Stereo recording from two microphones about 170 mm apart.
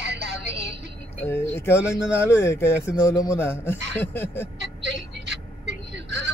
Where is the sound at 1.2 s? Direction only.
15° left (ahead or behind).